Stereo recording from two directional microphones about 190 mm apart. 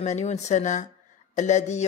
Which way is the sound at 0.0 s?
35° left (ahead or behind).